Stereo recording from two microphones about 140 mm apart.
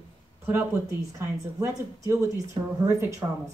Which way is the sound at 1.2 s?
25° right (ahead or behind).